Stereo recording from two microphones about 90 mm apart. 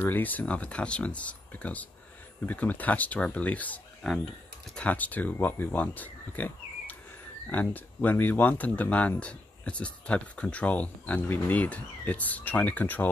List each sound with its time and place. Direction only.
0.0 s speech: 20° left (ahead or behind)